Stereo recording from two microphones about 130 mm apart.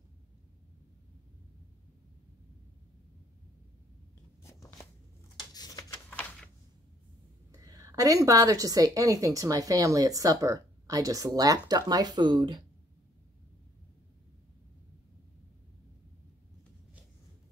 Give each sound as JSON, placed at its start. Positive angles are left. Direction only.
{"t": 4.4, "sound": "a sound", "side_deg": 20}
{"t": 6.0, "sound": "typewriter", "side_deg": 10}
{"t": 7.5, "sound": "a woman's voice", "side_deg": -25}